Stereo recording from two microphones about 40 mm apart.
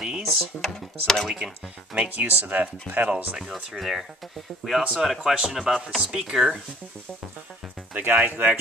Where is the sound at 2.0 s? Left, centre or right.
Right.